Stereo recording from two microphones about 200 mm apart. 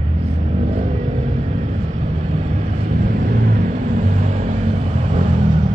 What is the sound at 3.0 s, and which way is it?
Vehicle, 40° right (ahead or behind).